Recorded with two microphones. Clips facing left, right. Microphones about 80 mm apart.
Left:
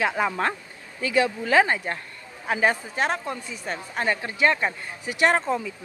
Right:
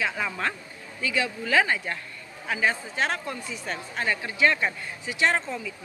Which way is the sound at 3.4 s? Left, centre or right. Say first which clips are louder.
Even; centre.